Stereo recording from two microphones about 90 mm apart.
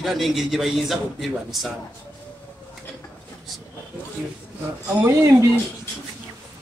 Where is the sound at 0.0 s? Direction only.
Centre (ahead or behind).